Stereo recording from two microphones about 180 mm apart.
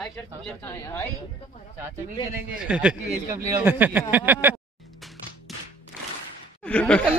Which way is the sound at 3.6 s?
10° right (ahead or behind).